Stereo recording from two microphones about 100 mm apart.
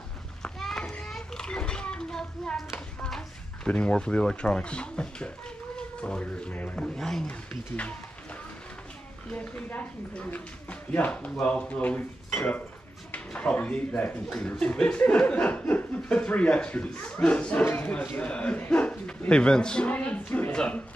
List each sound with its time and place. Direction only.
0.4 s children playing: 5° left (ahead or behind)
3.0 s speech: 5° left (ahead or behind)
9.3 s speech: 15° left (ahead or behind)